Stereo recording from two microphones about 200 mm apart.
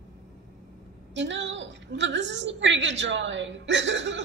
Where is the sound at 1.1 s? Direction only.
65° right (ahead or behind).